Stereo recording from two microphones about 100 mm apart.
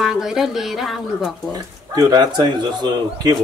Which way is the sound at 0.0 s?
5° right (ahead or behind).